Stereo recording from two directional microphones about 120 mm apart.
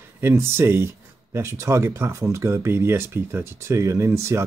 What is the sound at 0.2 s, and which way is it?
Speech, 20° right (ahead or behind).